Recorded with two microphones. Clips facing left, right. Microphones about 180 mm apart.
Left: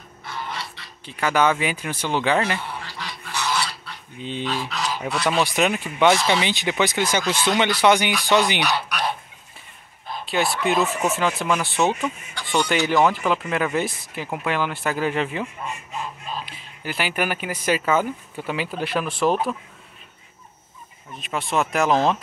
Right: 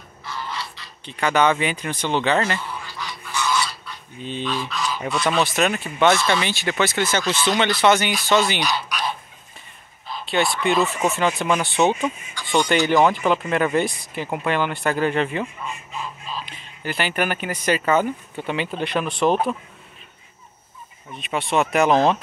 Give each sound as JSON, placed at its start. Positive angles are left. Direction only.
{"t": 0.3, "sound": "a sound", "side_deg": 55}
{"t": 1.0, "sound": "speech", "side_deg": 5}
{"t": 2.8, "sound": "goose", "side_deg": 75}
{"t": 4.2, "sound": "speech", "side_deg": 15}
{"t": 4.6, "sound": "a sound", "side_deg": 70}
{"t": 5.3, "sound": "speech", "side_deg": 10}
{"t": 8.5, "sound": "honk", "side_deg": 65}
{"t": 10.2, "sound": "speech", "side_deg": 5}
{"t": 16.4, "sound": "speech", "side_deg": 5}
{"t": 21.2, "sound": "speech", "side_deg": 0}